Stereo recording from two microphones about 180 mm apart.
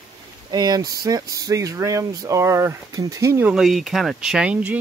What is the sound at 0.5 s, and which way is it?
Speech, 20° right (ahead or behind).